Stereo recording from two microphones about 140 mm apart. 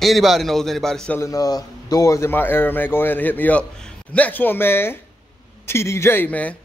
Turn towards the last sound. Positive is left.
turn(degrees=10)  # may be behind; listen again after turning